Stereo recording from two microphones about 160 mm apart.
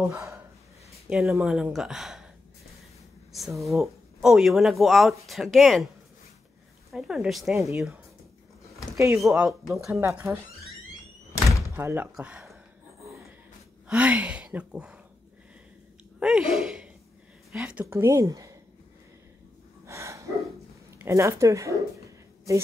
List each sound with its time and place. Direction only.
1.0 s speech: 5° right (ahead or behind)
3.3 s speech: centre (ahead or behind)
6.9 s speech: 5° right (ahead or behind)
8.9 s speech: 20° right (ahead or behind)
9.4 s speech: centre (ahead or behind)
9.8 s speech: 20° right (ahead or behind)
11.7 s speech: 10° right (ahead or behind)
13.8 s speech: 5° right (ahead or behind)
16.2 s speech: 5° right (ahead or behind); by 18.6 s 20° right (ahead or behind)
19.9 s gasp: 20° right (ahead or behind)
21.0 s speech: 15° right (ahead or behind)